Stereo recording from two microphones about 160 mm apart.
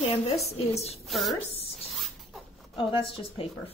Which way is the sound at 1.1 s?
Centre (ahead or behind).